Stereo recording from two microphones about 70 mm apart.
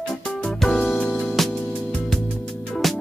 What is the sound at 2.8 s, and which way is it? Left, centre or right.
Music, centre.